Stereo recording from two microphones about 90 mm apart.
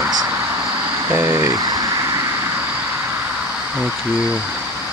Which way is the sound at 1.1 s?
30° right (ahead or behind).